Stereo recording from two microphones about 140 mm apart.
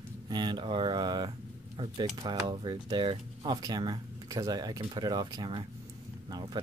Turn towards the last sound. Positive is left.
turn(degrees=-30)  # may be behind; listen again after turning